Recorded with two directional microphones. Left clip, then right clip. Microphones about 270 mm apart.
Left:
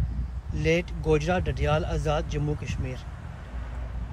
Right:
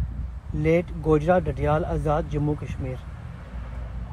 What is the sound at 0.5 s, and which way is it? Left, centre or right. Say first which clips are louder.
Speech: right 3 dB; right.